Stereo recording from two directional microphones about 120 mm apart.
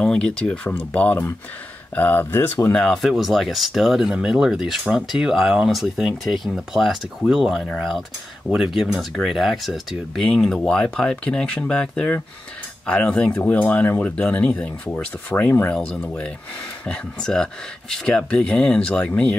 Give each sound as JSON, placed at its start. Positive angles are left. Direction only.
{"t": 0.0, "sound": "speech", "side_deg": 5}
{"t": 2.7, "sound": "speech", "side_deg": 5}